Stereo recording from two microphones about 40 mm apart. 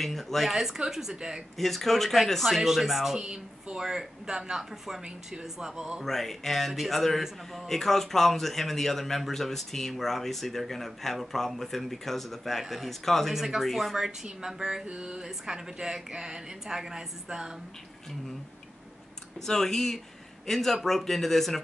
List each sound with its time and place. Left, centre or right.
0.0 s a man's voice: centre
0.6 s speech: centre
1.6 s a man's voice: centre
3.2 s speech: centre
6.0 s a man's voice: centre
13.3 s speech: centre
13.7 s a man's voice: centre
13.9 s speech: centre
14.9 s a sound: right
15.2 s speech: centre
19.4 s speech: centre